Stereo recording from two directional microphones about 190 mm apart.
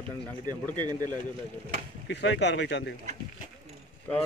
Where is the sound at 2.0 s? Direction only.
65° left (ahead or behind).